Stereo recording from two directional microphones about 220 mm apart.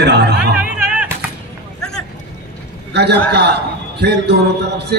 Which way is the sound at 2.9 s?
50° right (ahead or behind).